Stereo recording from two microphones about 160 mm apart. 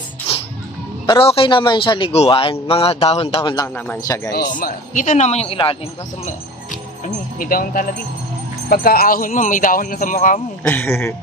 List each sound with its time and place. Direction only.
1.0 s a man's voice: 35° left (ahead or behind)
3.6 s speech: 15° left (ahead or behind)
4.2 s speech: 25° left (ahead or behind)
4.6 s speech: 55° left (ahead or behind); by 5.8 s 35° left (ahead or behind)
7.3 s speech: 60° left (ahead or behind)
10.6 s speech: 10° left (ahead or behind)